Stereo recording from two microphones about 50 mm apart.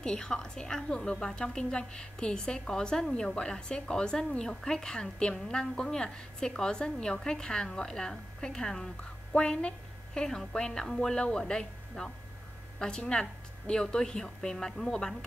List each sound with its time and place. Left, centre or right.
0.0 s a woman's voice: centre